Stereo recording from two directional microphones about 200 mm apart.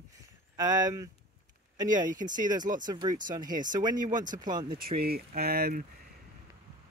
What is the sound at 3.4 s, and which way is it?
Speech, 40° right (ahead or behind).